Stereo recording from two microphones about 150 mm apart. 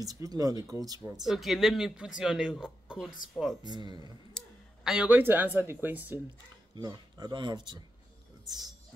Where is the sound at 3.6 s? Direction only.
30° right (ahead or behind).